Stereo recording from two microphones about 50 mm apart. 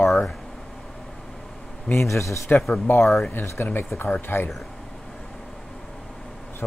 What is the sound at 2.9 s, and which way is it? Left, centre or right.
Speech, left.